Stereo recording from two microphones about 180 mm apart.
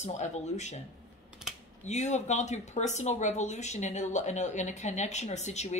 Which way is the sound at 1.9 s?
40° left (ahead or behind).